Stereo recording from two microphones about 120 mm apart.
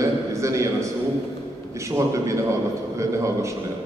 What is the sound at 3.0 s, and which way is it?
Speech, 25° right (ahead or behind).